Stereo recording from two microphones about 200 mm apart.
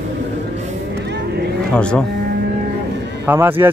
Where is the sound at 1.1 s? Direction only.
60° right (ahead or behind).